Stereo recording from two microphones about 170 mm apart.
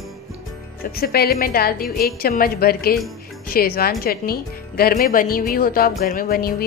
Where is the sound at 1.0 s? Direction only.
65° left (ahead or behind).